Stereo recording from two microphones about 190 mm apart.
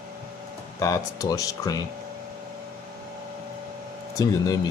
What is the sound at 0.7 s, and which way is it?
Speech, 15° left (ahead or behind).